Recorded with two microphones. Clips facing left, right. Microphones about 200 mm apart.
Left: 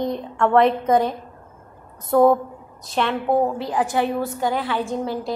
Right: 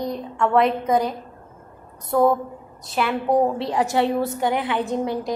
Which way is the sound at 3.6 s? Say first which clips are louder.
Right 1 dB; 25° right (ahead or behind).